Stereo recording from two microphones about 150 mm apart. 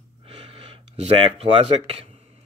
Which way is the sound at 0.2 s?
40° right (ahead or behind).